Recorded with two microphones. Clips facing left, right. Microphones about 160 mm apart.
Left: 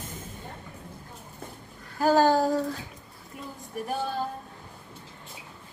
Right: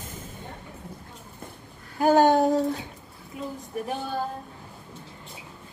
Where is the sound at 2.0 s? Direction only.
20° right (ahead or behind).